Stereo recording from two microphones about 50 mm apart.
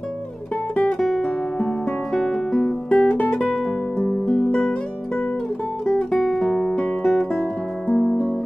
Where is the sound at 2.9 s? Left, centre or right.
Left.